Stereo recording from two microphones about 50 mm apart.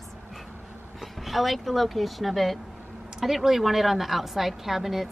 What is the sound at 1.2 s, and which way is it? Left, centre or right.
A woman's voice, centre.